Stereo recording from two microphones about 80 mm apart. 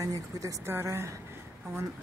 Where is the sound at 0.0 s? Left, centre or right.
Right.